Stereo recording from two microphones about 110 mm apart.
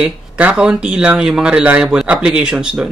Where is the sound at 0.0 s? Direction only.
10° right (ahead or behind).